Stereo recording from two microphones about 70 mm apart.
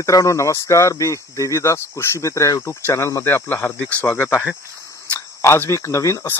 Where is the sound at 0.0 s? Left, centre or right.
Left.